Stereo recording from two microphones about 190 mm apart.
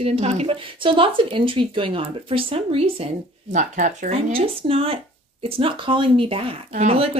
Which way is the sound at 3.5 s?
40° right (ahead or behind).